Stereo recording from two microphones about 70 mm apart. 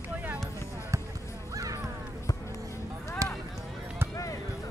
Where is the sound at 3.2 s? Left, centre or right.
Right.